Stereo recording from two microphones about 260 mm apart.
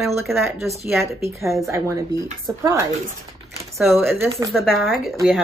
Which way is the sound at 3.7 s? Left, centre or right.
Centre.